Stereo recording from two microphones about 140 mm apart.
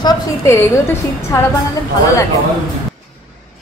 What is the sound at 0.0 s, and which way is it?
Speech, 25° left (ahead or behind).